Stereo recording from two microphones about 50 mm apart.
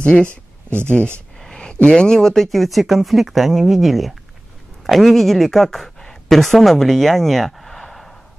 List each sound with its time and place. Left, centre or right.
0.0 s speech: left; by 8.2 s centre